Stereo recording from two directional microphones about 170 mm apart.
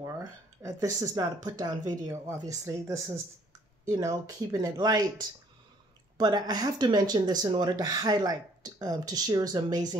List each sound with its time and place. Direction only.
0.0 s speech: 20° right (ahead or behind)
6.1 s speech: 25° right (ahead or behind)